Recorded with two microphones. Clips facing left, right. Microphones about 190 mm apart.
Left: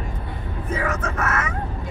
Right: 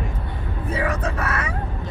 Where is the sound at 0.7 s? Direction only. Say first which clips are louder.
Right 1 dB; 35° right (ahead or behind).